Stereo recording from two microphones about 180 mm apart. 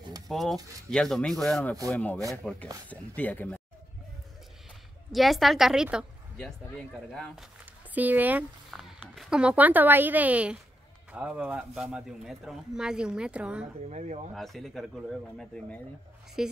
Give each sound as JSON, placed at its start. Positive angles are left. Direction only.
{"t": 0.3, "sound": "speech", "side_deg": 0}
{"t": 5.1, "sound": "speech", "side_deg": 0}
{"t": 13.8, "sound": "speech", "side_deg": -40}
{"t": 14.3, "sound": "speech", "side_deg": 0}